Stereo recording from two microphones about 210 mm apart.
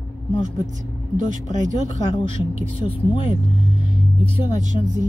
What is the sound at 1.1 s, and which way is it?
Speech, 35° right (ahead or behind).